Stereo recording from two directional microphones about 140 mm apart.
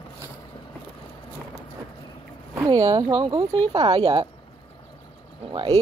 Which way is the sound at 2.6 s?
25° right (ahead or behind).